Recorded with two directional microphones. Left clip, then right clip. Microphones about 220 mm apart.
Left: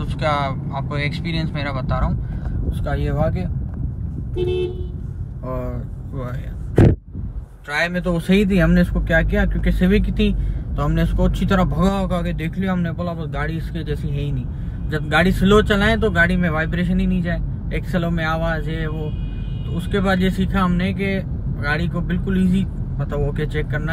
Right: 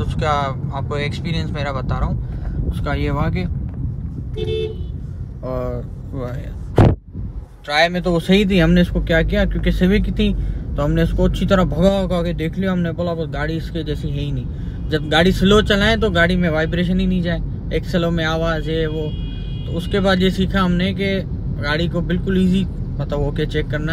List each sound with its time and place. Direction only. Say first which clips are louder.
0.2 s speech: right 1 dB; 20° right (ahead or behind)
2.8 s speech: even; centre (ahead or behind)
6.7 s a sound: right 1 dB; centre (ahead or behind)
7.7 s speech: right 5 dB; 10° right (ahead or behind)